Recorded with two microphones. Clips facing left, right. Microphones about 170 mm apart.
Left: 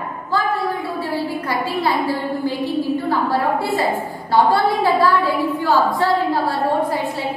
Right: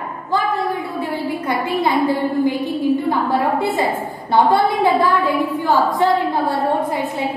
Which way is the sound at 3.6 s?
20° right (ahead or behind).